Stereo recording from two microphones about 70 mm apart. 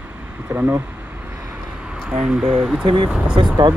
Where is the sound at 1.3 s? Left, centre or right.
Centre.